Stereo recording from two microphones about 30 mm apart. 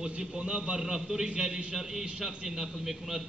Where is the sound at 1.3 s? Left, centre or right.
Right.